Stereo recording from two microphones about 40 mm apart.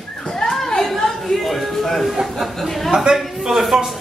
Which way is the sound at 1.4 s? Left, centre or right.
Centre.